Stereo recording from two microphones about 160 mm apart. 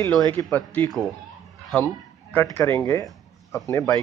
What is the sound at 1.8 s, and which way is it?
Speech, 15° left (ahead or behind).